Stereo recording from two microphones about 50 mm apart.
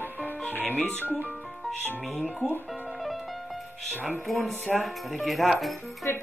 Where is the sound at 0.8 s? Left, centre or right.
Right.